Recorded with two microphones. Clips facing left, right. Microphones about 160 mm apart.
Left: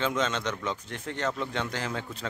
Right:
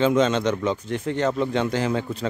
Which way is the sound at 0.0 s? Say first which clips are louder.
Right 9 dB; 20° right (ahead or behind).